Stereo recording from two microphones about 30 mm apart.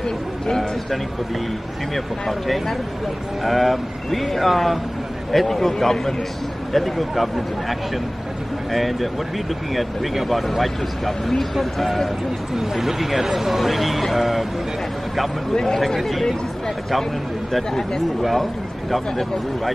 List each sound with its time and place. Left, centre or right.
2.2 s a man's voice: centre
8.7 s speech: centre
10.1 s speech: centre
12.5 s speech: centre
15.5 s a man's voice: centre
16.0 s speech: centre
18.2 s a man's voice: centre